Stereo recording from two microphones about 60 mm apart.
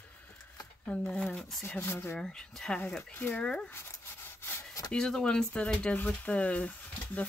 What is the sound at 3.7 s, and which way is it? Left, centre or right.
Sawing, left.